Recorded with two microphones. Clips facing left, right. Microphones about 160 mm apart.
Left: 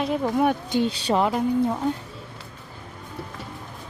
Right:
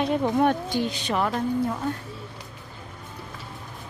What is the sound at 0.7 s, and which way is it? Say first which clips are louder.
Speech: left 4 dB; 30° left (ahead or behind).